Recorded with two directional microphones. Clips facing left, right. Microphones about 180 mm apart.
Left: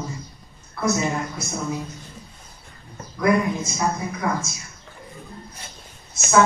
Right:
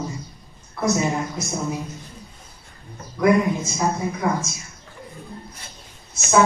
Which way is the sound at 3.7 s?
15° right (ahead or behind).